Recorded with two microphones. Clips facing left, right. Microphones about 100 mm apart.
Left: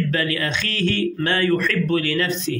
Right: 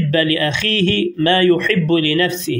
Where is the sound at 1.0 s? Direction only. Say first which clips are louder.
Right 8 dB; 85° right.